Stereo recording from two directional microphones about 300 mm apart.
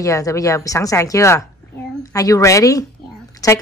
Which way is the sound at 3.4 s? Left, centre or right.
Centre.